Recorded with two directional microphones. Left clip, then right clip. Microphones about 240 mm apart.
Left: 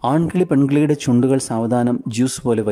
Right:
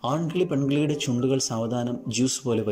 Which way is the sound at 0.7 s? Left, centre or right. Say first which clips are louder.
Left 9 dB; left.